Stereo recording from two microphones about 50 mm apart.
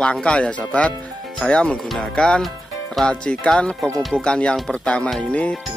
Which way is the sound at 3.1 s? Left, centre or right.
Centre.